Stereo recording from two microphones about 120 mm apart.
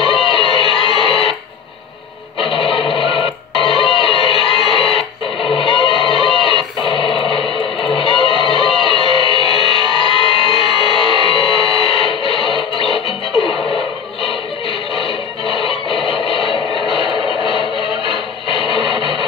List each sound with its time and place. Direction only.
0.0 s music: 50° left (ahead or behind)
2.4 s music: 50° left (ahead or behind)
15.0 s music: 50° left (ahead or behind)
16.1 s radio: 50° left (ahead or behind)
17.0 s music: 45° left (ahead or behind)